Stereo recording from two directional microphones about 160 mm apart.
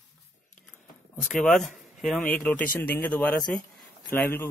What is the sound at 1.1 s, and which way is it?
Speech, 5° left (ahead or behind).